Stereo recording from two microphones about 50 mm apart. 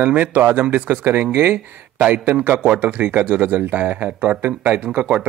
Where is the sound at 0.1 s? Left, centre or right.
Right.